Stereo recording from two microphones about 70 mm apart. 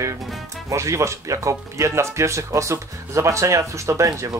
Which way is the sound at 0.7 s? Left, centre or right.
Right.